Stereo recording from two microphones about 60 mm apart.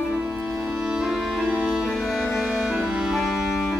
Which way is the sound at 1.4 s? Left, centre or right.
Right.